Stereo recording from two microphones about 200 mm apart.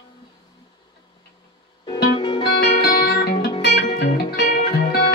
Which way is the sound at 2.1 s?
25° left (ahead or behind).